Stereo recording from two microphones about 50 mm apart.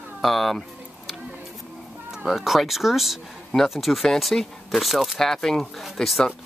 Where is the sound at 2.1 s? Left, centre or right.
Centre.